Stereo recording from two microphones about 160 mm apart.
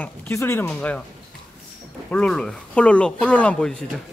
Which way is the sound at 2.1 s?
5° left (ahead or behind).